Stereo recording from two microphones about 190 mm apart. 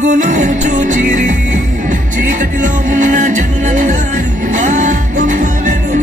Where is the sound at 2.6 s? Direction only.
45° right (ahead or behind).